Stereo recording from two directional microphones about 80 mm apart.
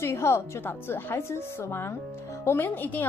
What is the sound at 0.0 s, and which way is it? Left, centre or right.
A woman's voice, left.